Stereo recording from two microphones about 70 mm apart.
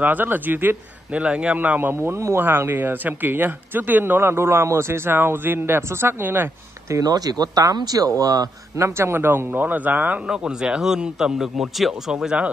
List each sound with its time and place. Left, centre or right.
0.0 s a man's voice: right
1.1 s a man's voice: centre
2.0 s a man's voice: right
7.0 s speech: right
8.7 s a man's voice: right
10.2 s a man's voice: centre